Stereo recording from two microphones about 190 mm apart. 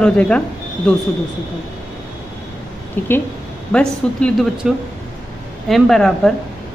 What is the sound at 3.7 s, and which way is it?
A woman's voice, 5° left (ahead or behind).